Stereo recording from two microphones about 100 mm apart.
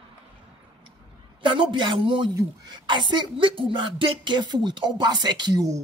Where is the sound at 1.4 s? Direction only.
55° right (ahead or behind).